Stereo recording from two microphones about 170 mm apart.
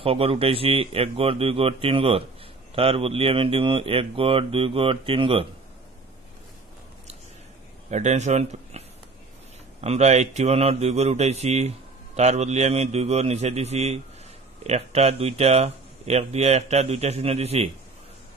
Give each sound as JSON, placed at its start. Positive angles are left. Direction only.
{"t": 0.0, "sound": "speech", "side_deg": -35}
{"t": 7.9, "sound": "speech", "side_deg": -45}